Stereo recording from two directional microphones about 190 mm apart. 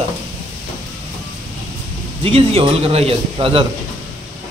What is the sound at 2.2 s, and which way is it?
A man's voice, 30° right (ahead or behind).